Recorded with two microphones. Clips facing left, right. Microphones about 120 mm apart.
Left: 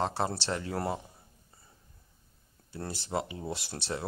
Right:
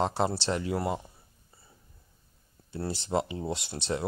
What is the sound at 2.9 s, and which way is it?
Speech, 25° right (ahead or behind).